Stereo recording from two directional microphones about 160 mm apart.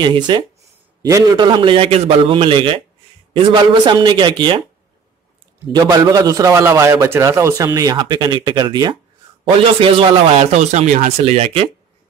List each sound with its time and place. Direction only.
0.0 s a man's voice: 30° right (ahead or behind)
5.7 s a man's voice: 20° right (ahead or behind); by 11.6 s 40° right (ahead or behind)